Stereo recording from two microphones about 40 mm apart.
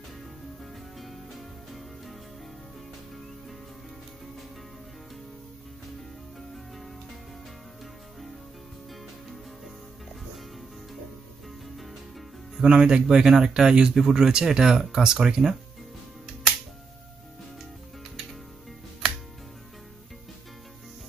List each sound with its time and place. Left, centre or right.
0.9 s music: centre
12.6 s speech: right; by 14.3 s centre
14.3 s speech: centre